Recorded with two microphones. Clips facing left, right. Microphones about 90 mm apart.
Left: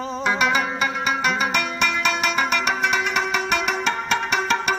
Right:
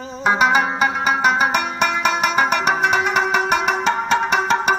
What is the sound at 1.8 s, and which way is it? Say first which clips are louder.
Music: right 4 dB; 35° right (ahead or behind).